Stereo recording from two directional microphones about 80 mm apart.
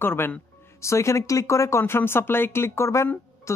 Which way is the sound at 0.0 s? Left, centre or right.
Left.